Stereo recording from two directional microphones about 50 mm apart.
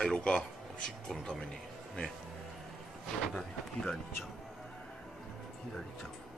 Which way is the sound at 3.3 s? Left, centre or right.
Centre.